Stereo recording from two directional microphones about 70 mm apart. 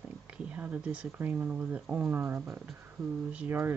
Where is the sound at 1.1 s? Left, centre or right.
Right.